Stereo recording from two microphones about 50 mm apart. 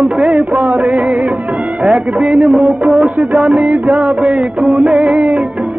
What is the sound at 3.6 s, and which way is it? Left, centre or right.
Music, right.